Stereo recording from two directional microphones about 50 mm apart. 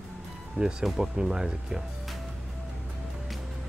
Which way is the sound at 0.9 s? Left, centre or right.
Centre.